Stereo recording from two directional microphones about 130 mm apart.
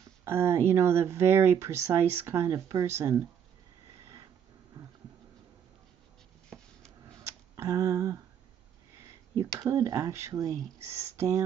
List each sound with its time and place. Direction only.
0.2 s speech: 20° right (ahead or behind)
7.5 s a sound: 25° right (ahead or behind)
9.6 s speech: 25° right (ahead or behind)